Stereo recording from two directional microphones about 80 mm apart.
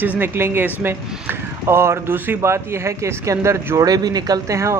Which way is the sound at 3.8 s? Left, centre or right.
Right.